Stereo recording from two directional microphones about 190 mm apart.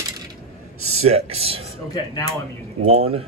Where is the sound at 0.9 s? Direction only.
30° right (ahead or behind).